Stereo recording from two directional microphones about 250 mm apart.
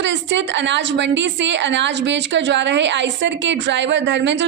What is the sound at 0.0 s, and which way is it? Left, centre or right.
A woman's voice, right.